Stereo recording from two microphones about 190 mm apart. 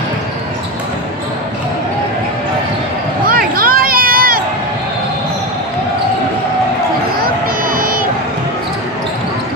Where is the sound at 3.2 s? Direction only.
50° right (ahead or behind).